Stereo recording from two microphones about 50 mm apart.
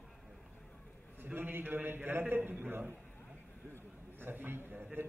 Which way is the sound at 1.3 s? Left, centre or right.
Right.